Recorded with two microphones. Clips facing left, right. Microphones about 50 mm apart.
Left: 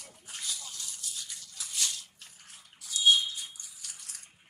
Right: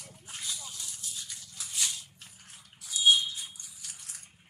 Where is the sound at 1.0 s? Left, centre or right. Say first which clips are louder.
Left 1 dB; centre.